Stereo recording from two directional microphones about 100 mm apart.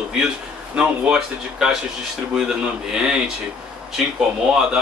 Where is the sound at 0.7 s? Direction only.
10° right (ahead or behind).